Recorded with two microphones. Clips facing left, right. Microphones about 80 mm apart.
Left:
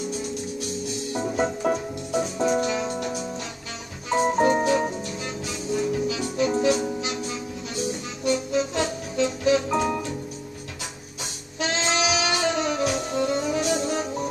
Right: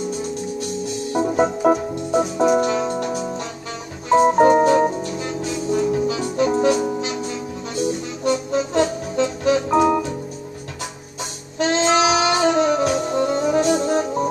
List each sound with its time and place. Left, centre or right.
1.1 s music: right
4.1 s organ: right
7.0 s music: right
8.2 s organ: right
11.5 s saxophone: right